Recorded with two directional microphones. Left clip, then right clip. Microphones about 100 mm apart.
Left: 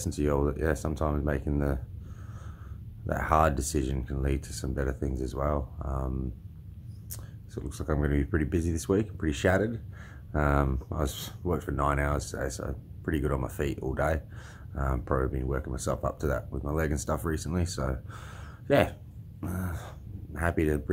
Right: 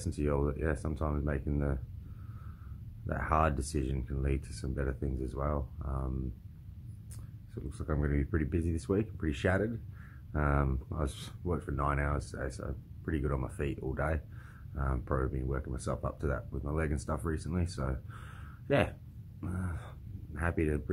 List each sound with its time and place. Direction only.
0.0 s speech: 20° left (ahead or behind)
3.1 s speech: 20° left (ahead or behind)
7.5 s speech: 25° left (ahead or behind)